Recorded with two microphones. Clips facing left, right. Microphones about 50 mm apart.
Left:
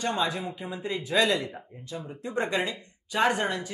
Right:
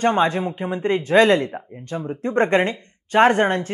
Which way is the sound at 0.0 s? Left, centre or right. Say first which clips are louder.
Right 10 dB; right.